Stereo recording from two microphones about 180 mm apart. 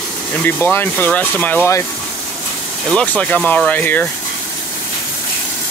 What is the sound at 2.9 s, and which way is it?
Speech, 5° left (ahead or behind).